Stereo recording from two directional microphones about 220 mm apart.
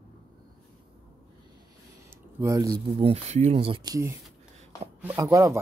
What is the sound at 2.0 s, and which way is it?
Speech, 15° right (ahead or behind).